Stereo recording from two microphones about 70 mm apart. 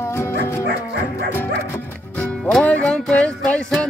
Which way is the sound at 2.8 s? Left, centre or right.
Centre.